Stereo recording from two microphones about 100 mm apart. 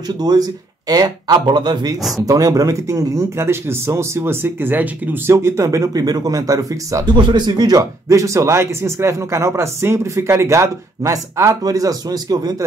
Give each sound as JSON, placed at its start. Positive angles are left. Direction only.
{"t": 0.2, "sound": "speech", "side_deg": -40}
{"t": 7.1, "sound": "speech", "side_deg": -50}